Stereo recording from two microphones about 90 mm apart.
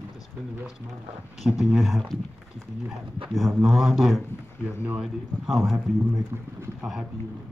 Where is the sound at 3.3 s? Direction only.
Centre (ahead or behind).